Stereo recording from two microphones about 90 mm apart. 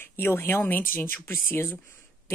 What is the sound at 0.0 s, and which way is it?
Speech, 25° left (ahead or behind).